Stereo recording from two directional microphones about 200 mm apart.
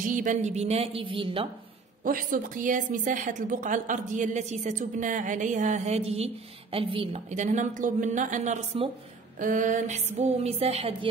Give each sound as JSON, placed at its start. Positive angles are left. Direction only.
{"t": 0.0, "sound": "a woman's voice", "side_deg": -40}
{"t": 2.0, "sound": "a woman's voice", "side_deg": -45}